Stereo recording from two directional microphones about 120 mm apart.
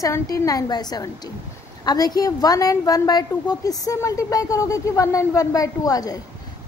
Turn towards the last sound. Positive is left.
turn(degrees=30)  # may be behind; listen again after turning